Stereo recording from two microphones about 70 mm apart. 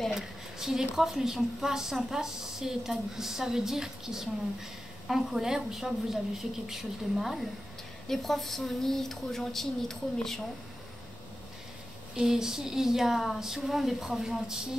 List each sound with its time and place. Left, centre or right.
0.1 s a woman's voice: centre
12.2 s a woman's voice: centre